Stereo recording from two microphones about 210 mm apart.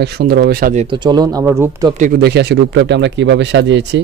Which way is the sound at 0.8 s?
20° right (ahead or behind).